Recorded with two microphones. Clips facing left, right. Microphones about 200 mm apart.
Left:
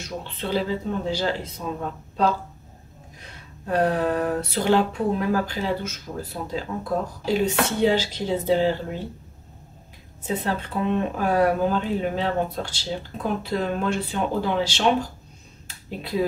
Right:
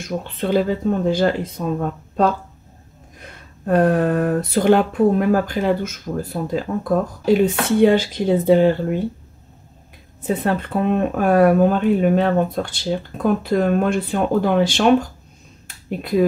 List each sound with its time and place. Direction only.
0.0 s speech: 50° right (ahead or behind)
7.4 s speech: 55° right (ahead or behind)
10.2 s speech: 55° right (ahead or behind)
15.6 s finger snapping: 55° right (ahead or behind)